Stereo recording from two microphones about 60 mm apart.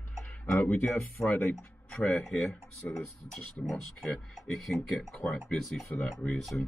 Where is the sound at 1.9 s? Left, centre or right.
Centre.